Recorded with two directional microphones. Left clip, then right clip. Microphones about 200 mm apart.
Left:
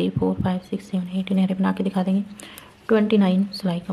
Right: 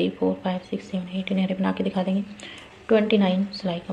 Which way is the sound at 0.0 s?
30° left (ahead or behind).